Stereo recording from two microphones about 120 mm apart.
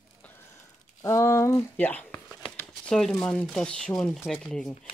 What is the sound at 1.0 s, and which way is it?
Speech, 25° left (ahead or behind).